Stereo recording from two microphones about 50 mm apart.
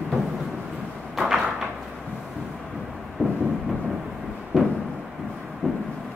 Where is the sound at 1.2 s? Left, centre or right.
Centre.